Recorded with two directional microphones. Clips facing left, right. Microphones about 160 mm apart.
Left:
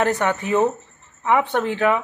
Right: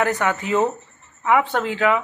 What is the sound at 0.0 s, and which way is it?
Speech, 25° left (ahead or behind).